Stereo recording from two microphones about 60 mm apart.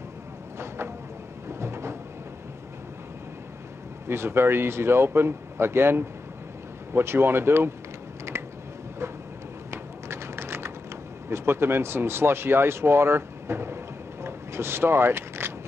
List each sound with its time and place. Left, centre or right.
0.6 s vehicle: right
1.5 s cupboard open or close: right
4.1 s speech: right
8.3 s a sound: right
9.7 s typing: right
11.2 s speech: right
14.2 s a sound: right